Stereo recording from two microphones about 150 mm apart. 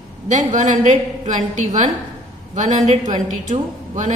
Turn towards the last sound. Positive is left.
turn(degrees=-55)  # may be behind; listen again after turning